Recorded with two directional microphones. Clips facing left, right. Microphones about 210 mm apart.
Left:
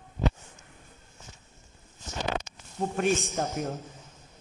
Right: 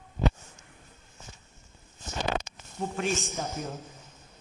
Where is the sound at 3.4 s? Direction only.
60° left (ahead or behind).